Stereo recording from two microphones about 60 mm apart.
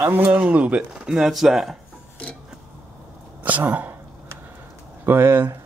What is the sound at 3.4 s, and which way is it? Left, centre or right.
Speech, right.